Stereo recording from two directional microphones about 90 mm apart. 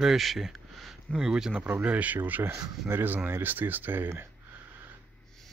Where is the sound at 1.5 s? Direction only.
20° right (ahead or behind).